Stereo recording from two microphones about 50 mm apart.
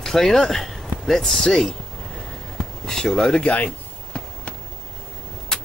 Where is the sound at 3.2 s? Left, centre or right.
Left.